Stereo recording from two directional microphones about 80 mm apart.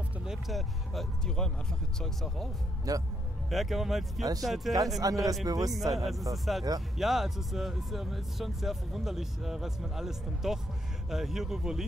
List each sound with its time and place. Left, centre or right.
0.2 s speech: centre
2.9 s a man's voice: right
3.4 s speech: centre
4.2 s a man's voice: right
5.8 s speech: centre